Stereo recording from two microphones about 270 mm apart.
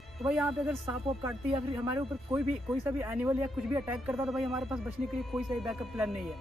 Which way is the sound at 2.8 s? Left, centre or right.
Centre.